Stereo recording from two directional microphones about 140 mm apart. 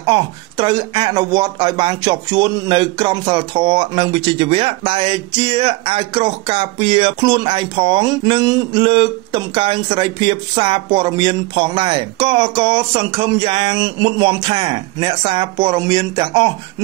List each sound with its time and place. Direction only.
0.0 s speech: 35° right (ahead or behind)